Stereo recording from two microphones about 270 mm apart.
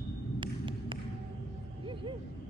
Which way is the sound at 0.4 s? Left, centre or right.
Centre.